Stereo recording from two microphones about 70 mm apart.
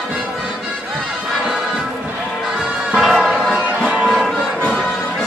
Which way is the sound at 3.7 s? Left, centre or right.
Centre.